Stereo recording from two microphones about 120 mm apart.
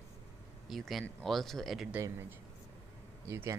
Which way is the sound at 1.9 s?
20° right (ahead or behind).